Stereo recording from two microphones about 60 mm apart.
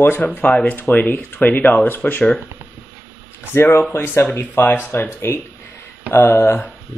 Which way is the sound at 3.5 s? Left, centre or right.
Left.